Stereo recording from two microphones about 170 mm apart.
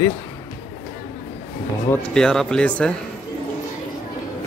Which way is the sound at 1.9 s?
5° left (ahead or behind).